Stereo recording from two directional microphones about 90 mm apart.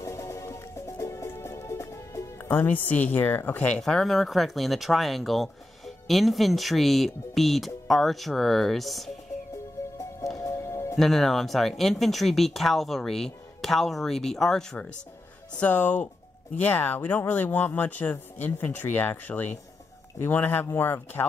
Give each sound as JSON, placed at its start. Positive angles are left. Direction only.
{"t": 0.0, "sound": "music", "side_deg": 35}
{"t": 2.4, "sound": "speech", "side_deg": 20}
{"t": 3.8, "sound": "speech", "side_deg": 0}
{"t": 10.3, "sound": "music", "side_deg": 35}
{"t": 11.0, "sound": "speech", "side_deg": 0}
{"t": 15.6, "sound": "speech", "side_deg": 20}